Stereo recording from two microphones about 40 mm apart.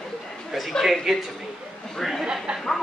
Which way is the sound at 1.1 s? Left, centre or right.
Centre.